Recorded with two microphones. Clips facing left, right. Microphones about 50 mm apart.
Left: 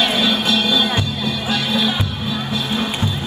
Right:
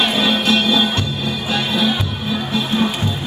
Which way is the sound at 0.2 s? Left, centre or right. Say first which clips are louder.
Right 1 dB; right.